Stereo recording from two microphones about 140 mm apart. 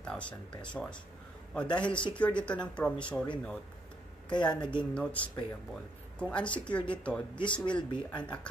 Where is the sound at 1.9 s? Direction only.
35° left (ahead or behind).